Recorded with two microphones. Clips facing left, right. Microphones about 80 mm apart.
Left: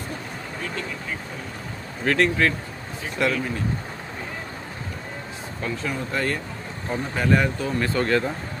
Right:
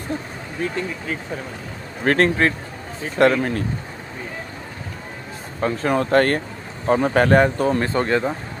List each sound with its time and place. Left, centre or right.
2.0 s speech: right
3.2 s speech: right
5.6 s speech: right
5.9 s speech: right
7.8 s speech: right